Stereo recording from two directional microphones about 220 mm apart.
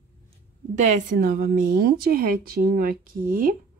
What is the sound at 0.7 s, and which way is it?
A woman's voice, 40° right (ahead or behind).